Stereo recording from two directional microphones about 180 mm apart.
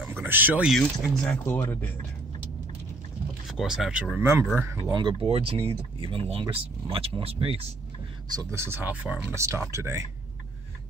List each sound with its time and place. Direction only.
0.1 s speech: 10° right (ahead or behind); by 1.9 s 10° left (ahead or behind)
3.4 s speech: 5° right (ahead or behind); by 7.6 s 30° right (ahead or behind)
8.3 s speech: 15° right (ahead or behind)